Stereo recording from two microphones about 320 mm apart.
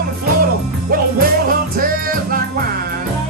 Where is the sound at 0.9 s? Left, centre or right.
Right.